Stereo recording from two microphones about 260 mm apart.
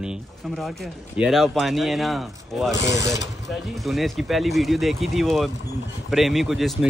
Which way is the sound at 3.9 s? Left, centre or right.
Centre.